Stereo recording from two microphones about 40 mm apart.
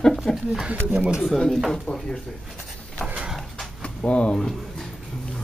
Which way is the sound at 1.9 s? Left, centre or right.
Left.